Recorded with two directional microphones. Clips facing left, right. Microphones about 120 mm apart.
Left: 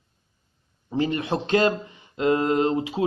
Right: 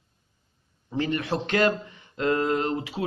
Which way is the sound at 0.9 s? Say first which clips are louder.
Left 2 dB; 20° left (ahead or behind).